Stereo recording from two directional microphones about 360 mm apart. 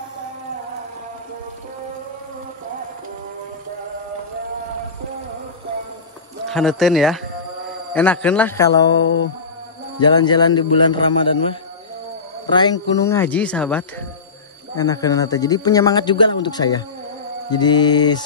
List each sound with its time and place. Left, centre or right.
6.5 s a man's voice: centre
9.0 s insect: left
9.9 s speech: centre
12.4 s speech: centre